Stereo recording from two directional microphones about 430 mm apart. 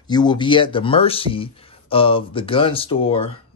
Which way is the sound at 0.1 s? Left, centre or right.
Centre.